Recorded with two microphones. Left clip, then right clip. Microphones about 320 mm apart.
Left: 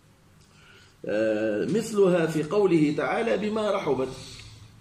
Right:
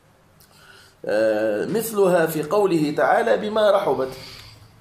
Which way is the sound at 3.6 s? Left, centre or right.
Centre.